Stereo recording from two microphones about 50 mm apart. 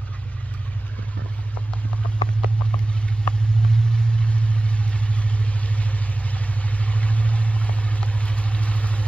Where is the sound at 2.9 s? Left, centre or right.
Left.